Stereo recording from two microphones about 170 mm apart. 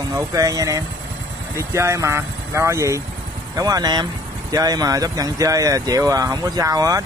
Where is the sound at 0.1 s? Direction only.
20° right (ahead or behind).